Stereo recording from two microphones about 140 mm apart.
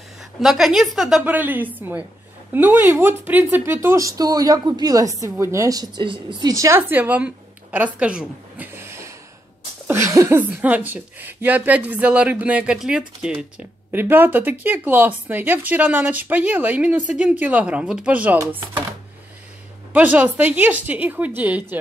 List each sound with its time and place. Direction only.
0.4 s a woman's voice: centre (ahead or behind)
1.2 s a woman's voice: 15° right (ahead or behind)
19.9 s speech: 10° right (ahead or behind)